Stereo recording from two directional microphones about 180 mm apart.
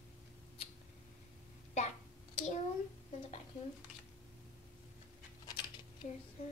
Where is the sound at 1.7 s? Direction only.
40° left (ahead or behind).